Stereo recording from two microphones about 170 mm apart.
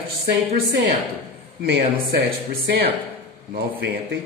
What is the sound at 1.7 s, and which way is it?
Speech, 80° right.